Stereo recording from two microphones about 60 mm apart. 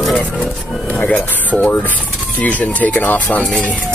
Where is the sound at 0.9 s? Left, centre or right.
Left.